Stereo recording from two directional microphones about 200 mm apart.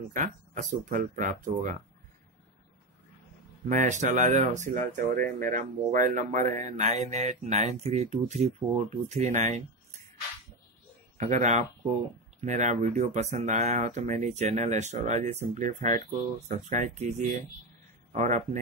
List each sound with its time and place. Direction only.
0.1 s speech: 40° right (ahead or behind)
3.6 s speech: 40° right (ahead or behind)
11.1 s speech: 35° right (ahead or behind)